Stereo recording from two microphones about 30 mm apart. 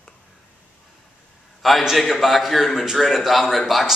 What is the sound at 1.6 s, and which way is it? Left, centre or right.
A man's voice, centre.